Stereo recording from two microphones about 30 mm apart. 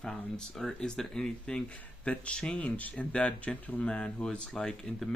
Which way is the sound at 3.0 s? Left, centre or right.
Left.